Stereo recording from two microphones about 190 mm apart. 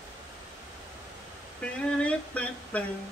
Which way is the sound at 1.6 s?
5° left (ahead or behind).